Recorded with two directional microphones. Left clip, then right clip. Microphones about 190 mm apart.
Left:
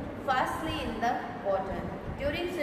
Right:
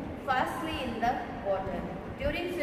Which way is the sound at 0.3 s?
30° left (ahead or behind).